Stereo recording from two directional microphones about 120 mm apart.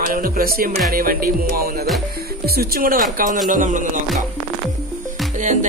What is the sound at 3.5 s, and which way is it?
Speech, 90° right.